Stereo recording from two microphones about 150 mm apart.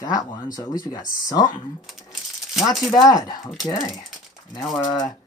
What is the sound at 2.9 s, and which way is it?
Speech, 25° left (ahead or behind).